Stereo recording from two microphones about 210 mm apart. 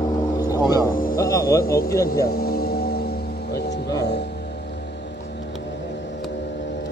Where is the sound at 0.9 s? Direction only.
40° left (ahead or behind).